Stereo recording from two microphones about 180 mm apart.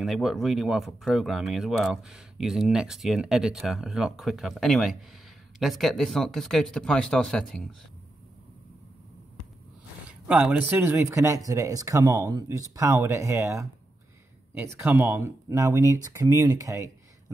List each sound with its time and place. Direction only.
0.0 s speech: centre (ahead or behind)
10.2 s speech: 10° right (ahead or behind)